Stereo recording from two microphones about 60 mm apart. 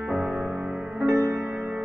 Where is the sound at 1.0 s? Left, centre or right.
Right.